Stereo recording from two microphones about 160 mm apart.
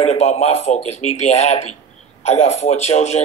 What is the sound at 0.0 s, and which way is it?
A man's voice, 40° left (ahead or behind).